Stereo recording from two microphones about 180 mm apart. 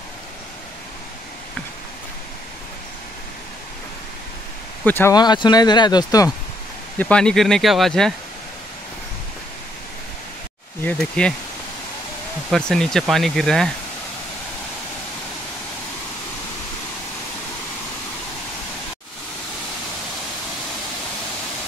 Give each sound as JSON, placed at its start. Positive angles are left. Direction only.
{"t": 4.8, "sound": "speech", "side_deg": 10}
{"t": 5.1, "sound": "speech", "side_deg": 25}
{"t": 7.0, "sound": "speech", "side_deg": 5}
{"t": 10.8, "sound": "speech", "side_deg": 5}
{"t": 12.4, "sound": "speech", "side_deg": 5}